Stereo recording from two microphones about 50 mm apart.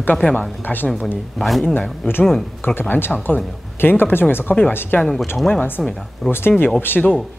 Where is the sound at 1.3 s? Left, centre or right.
Centre.